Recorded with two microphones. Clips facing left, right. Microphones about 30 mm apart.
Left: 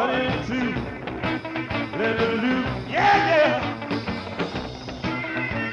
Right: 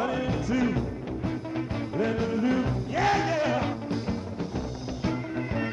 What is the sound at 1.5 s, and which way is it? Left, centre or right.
Music, left.